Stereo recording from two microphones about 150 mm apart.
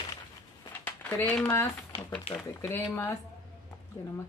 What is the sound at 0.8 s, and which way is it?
Speech, 10° left (ahead or behind).